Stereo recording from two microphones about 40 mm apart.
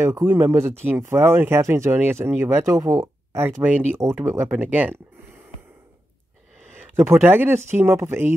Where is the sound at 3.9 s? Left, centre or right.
Right.